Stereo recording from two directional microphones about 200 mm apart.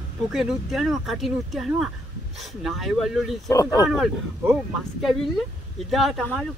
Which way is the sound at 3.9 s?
Centre (ahead or behind).